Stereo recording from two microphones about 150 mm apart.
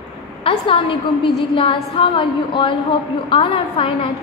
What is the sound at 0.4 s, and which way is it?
A woman's voice, 35° left (ahead or behind).